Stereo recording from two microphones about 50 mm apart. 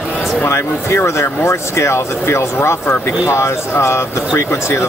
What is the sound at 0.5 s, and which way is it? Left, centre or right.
A man's voice, left.